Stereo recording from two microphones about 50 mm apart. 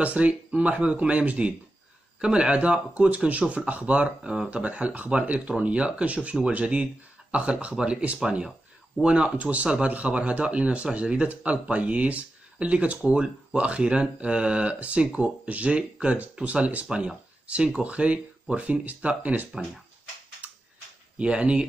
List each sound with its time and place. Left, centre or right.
0.0 s speech: right
2.2 s speech: centre
21.2 s speech: right